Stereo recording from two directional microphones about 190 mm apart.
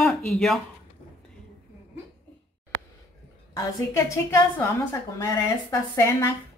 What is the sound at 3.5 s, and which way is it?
A woman's voice, 15° left (ahead or behind).